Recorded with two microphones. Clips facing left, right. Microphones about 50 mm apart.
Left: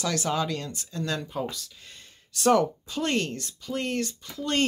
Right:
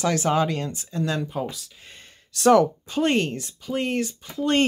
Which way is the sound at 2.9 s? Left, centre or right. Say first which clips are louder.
Right 5 dB; right.